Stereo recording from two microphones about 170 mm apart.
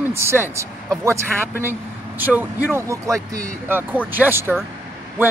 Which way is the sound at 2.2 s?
10° right (ahead or behind).